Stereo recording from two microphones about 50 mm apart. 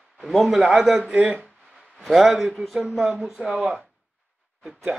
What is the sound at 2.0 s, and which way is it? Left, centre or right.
Speech, centre.